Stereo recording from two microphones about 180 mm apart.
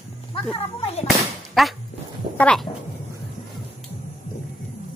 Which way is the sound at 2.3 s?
5° left (ahead or behind).